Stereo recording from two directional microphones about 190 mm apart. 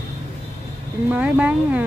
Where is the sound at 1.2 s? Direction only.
5° right (ahead or behind).